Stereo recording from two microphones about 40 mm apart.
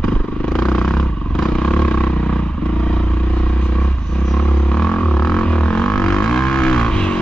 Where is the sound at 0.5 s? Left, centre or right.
Centre.